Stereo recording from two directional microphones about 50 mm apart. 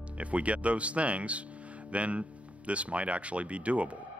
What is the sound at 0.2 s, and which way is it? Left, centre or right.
Speech, right.